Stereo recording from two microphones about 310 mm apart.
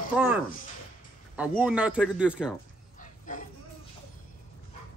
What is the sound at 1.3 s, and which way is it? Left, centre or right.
A man's voice, centre.